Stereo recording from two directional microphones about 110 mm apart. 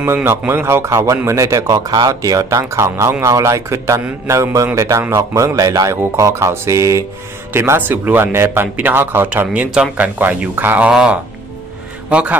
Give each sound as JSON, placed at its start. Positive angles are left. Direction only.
{"t": 0.0, "sound": "a man's voice", "side_deg": -25}